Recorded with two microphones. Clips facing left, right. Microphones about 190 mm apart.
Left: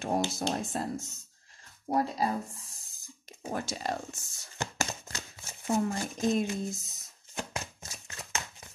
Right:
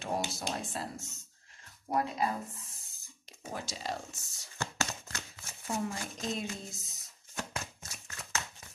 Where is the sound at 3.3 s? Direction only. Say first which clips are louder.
Left 6 dB; 50° left (ahead or behind).